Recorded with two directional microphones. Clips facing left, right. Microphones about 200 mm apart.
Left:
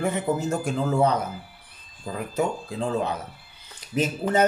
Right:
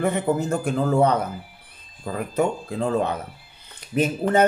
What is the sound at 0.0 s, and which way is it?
Speech, 55° right (ahead or behind).